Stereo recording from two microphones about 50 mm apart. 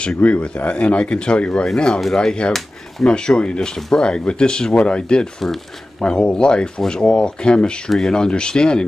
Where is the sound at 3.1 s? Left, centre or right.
Centre.